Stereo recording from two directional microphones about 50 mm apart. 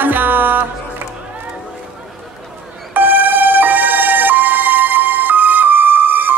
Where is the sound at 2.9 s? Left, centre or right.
Right.